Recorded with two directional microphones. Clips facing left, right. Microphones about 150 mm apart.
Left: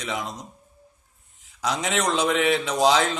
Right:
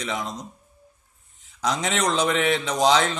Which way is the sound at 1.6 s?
5° left (ahead or behind).